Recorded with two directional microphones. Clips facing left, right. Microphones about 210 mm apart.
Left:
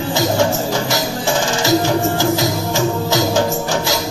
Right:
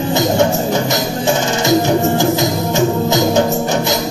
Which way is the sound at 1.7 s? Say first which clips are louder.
Right 3 dB; 20° right (ahead or behind).